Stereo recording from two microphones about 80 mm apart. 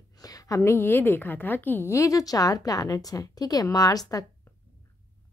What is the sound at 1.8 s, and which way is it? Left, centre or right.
A woman's voice, left.